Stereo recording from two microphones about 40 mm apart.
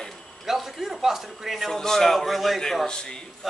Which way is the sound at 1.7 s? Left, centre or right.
Centre.